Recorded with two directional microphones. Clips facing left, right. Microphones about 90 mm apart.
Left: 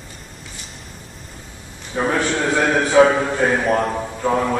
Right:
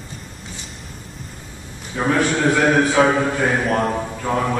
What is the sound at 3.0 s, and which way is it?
A man's voice, 5° right (ahead or behind).